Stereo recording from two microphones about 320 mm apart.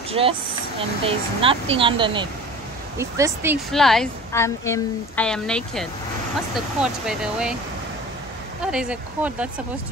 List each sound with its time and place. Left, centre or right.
0.1 s a woman's voice: centre
8.7 s a woman's voice: centre